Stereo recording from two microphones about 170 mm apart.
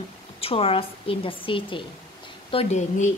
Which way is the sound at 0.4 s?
35° left (ahead or behind).